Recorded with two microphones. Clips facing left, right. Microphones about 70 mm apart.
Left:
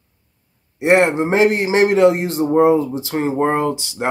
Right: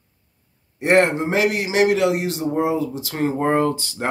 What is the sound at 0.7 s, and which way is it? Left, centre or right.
A man's voice, centre.